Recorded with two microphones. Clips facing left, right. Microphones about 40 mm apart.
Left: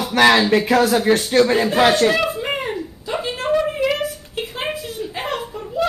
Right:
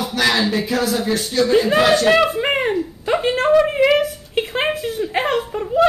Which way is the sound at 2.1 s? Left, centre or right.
Right.